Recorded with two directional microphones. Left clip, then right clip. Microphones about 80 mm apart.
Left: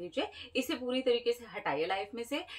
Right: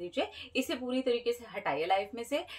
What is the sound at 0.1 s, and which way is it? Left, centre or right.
A woman's voice, right.